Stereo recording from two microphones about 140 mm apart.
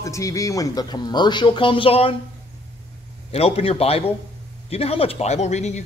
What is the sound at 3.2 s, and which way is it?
A man's voice, 45° left (ahead or behind).